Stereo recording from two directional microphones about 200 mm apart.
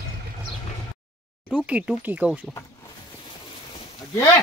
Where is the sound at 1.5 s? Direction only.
5° right (ahead or behind).